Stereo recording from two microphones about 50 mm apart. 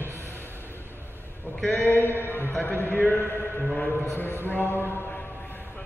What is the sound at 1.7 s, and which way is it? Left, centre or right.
Speech, left.